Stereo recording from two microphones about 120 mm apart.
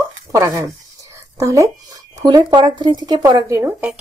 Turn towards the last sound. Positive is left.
turn(degrees=-25)  # may be behind; listen again after turning